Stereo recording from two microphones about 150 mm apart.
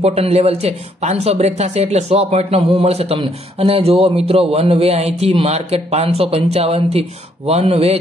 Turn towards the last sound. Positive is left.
turn(degrees=-40)  # may be behind; listen again after turning